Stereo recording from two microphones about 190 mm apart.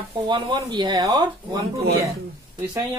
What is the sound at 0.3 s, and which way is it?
Speech, 25° right (ahead or behind).